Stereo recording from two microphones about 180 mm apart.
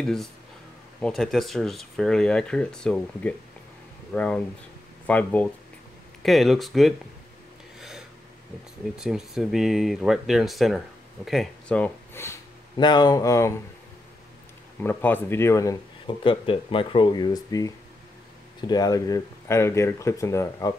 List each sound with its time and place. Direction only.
0.0 s speech: 5° left (ahead or behind)
8.9 s speech: 5° right (ahead or behind); by 12.4 s 15° left (ahead or behind)
12.7 s speech: 25° left (ahead or behind)
14.8 s speech: 10° left (ahead or behind)
16.3 s speech: 30° left (ahead or behind)